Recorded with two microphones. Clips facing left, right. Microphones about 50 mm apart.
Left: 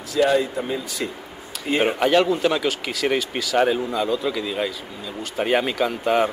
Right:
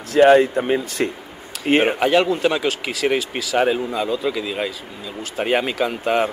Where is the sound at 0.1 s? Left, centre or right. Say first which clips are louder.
Right 7 dB; right.